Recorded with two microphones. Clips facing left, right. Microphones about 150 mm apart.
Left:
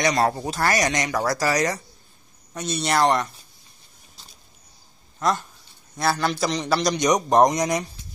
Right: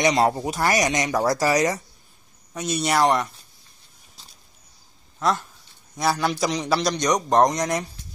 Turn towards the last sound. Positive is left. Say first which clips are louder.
# left 1 dB
turn(degrees=5)  # may be behind; listen again after turning